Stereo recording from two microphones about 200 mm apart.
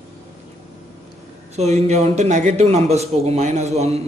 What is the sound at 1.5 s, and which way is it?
A man's voice, 35° right (ahead or behind).